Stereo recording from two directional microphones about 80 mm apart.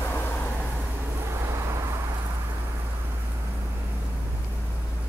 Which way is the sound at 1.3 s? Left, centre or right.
Right.